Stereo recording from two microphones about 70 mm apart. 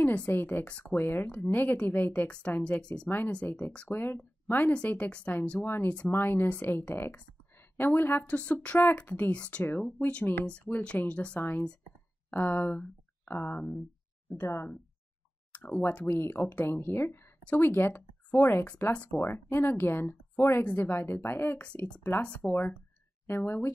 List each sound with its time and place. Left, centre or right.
0.0 s speech: left
3.4 s speech: left
15.5 s speech: left